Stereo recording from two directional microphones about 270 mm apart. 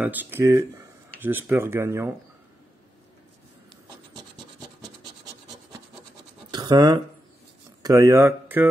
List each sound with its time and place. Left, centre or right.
0.0 s speech: centre
4.1 s rub: centre
6.5 s a sound: centre
7.8 s speech: centre